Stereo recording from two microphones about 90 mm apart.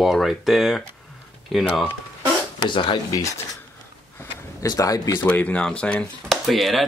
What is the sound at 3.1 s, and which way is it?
Speech, 40° left (ahead or behind).